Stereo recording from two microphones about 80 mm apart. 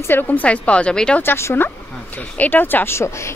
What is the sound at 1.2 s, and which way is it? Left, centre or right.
Speech, left.